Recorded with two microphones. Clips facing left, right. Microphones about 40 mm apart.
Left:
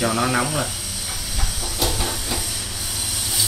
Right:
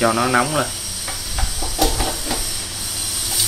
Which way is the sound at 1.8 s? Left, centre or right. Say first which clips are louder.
Right 4 dB; right.